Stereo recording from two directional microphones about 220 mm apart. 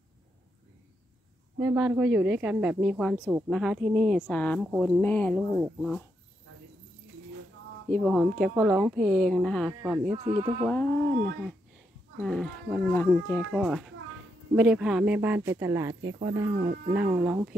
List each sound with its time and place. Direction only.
1.6 s speech: 10° right (ahead or behind)
7.9 s speech: centre (ahead or behind)
10.0 s speech: 30° right (ahead or behind)
10.6 s speech: 10° left (ahead or behind)
12.2 s speech: 5° left (ahead or behind); by 16.3 s 15° right (ahead or behind)
16.5 s speech: 40° right (ahead or behind)
16.9 s speech: 10° right (ahead or behind)